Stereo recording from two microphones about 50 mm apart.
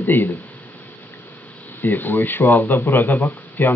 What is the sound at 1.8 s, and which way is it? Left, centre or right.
Speech, left.